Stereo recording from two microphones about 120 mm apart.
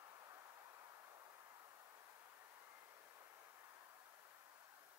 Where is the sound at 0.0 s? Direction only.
30° right (ahead or behind).